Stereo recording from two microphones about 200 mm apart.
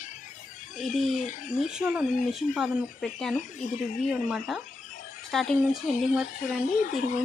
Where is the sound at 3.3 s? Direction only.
40° left (ahead or behind).